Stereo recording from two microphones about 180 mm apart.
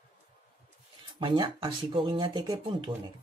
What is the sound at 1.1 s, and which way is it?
Speech, 25° right (ahead or behind).